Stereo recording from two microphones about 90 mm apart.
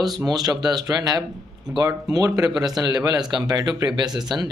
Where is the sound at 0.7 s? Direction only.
50° right (ahead or behind).